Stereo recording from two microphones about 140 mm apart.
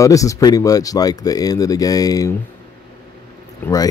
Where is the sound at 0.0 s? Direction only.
25° left (ahead or behind).